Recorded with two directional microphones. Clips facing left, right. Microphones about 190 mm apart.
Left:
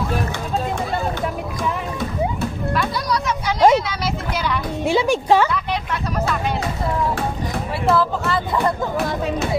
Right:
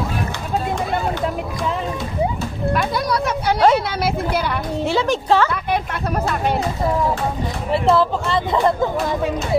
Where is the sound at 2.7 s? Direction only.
55° right (ahead or behind).